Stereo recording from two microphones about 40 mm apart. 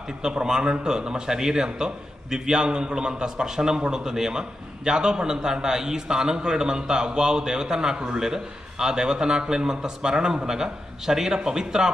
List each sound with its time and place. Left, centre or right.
0.2 s a man's voice: centre